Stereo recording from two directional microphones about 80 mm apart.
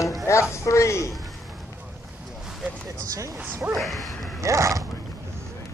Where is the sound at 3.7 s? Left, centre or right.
Centre.